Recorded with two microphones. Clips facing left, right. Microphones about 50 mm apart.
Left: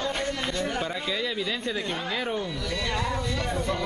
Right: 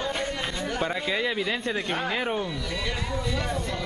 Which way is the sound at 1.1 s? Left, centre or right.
Right.